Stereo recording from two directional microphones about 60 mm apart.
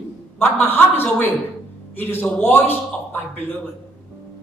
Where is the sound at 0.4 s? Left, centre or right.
Left.